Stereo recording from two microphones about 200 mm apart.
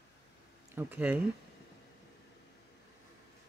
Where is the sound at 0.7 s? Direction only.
10° right (ahead or behind).